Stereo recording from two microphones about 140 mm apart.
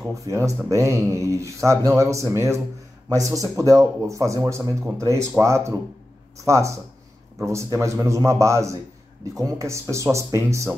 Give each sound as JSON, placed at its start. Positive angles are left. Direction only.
{"t": 0.1, "sound": "speech", "side_deg": -20}